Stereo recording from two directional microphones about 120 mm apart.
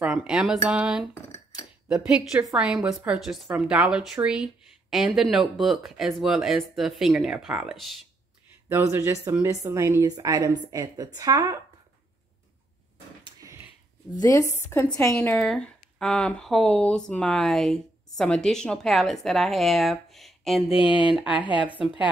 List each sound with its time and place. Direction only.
0.0 s a woman's voice: 10° right (ahead or behind)
8.6 s a woman's voice: 20° right (ahead or behind)
13.2 s a sound: 30° right (ahead or behind)
14.2 s a woman's voice: 25° left (ahead or behind)
15.1 s speech: 10° left (ahead or behind)
20.7 s speech: 45° left (ahead or behind)